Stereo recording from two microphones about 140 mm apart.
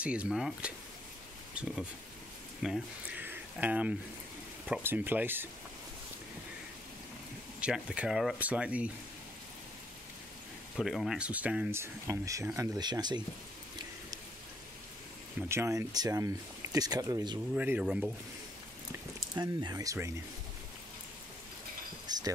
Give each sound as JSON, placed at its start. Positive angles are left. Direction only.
{"t": 0.0, "sound": "speech", "side_deg": -10}
{"t": 7.6, "sound": "speech", "side_deg": -5}
{"t": 10.8, "sound": "speech", "side_deg": 0}
{"t": 15.4, "sound": "speech", "side_deg": -20}
{"t": 17.6, "sound": "speech", "side_deg": -10}
{"t": 19.3, "sound": "speech", "side_deg": -25}
{"t": 22.0, "sound": "a sound", "side_deg": -30}